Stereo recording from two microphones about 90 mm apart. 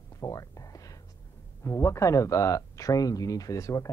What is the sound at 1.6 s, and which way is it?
Speech, 35° left (ahead or behind).